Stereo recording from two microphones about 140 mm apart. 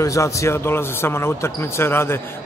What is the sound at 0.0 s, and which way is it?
Speech, 20° left (ahead or behind).